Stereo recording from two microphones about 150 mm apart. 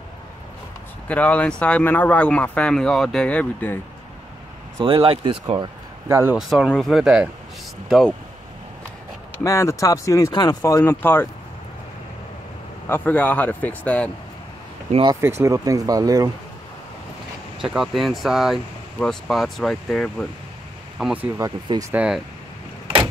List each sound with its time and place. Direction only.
1.0 s speech: 10° left (ahead or behind)
4.7 s speech: 35° right (ahead or behind)
6.0 s speech: 20° right (ahead or behind)
6.3 s speech: centre (ahead or behind)
9.4 s speech: 20° left (ahead or behind)
12.8 s speech: 15° left (ahead or behind)
14.9 s speech: 35° right (ahead or behind)
15.1 s speech: 15° right (ahead or behind)
17.6 s speech: 5° right (ahead or behind)
21.0 s speech: 10° right (ahead or behind)